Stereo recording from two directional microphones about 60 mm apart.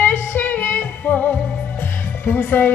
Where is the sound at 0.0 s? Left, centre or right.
Left.